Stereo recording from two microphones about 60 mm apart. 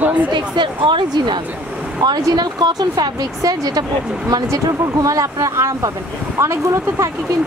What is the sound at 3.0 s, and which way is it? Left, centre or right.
Speech, right.